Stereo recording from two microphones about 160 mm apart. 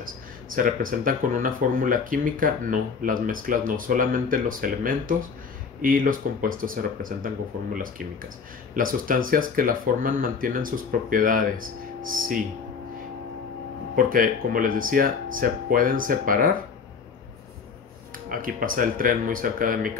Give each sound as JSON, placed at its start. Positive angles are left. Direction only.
{"t": 0.0, "sound": "speech", "side_deg": -60}
{"t": 13.9, "sound": "speech", "side_deg": -60}
{"t": 18.3, "sound": "speech", "side_deg": -60}